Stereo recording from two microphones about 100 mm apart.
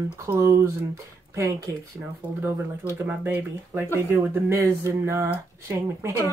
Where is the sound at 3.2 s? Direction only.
25° right (ahead or behind).